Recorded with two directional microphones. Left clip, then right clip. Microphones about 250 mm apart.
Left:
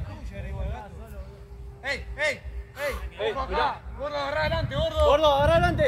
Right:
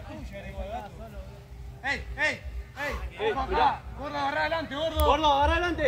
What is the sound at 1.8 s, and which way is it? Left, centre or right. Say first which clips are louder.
Speech: even; left.